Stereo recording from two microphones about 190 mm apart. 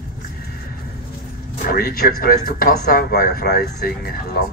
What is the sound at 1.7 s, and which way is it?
Speech, 55° left (ahead or behind).